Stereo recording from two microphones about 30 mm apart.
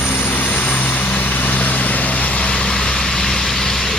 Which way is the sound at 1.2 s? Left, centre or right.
Left.